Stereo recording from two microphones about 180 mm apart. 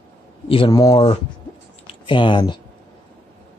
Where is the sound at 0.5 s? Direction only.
25° left (ahead or behind).